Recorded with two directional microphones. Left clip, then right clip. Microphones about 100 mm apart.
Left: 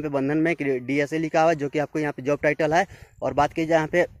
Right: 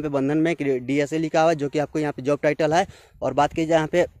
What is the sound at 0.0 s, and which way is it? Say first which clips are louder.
Speech: right 1 dB; 30° right (ahead or behind).